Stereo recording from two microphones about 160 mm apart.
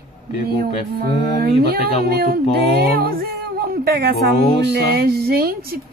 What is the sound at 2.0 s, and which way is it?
A woman's voice, 75° right (ahead or behind).